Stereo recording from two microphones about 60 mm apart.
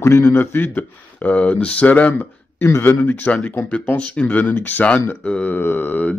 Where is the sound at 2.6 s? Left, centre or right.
Left.